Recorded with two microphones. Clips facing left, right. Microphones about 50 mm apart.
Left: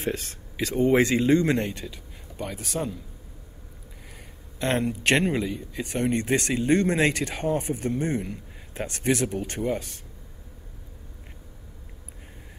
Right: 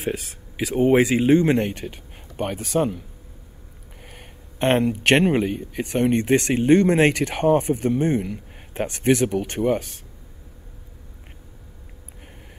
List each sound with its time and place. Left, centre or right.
0.0 s speech: centre
1.2 s speech: right
4.6 s a man's voice: right